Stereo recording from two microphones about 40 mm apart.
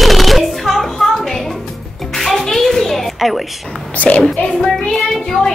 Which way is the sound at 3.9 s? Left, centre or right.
Left.